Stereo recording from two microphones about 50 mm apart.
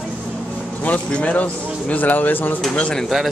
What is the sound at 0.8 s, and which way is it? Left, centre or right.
Speech, left.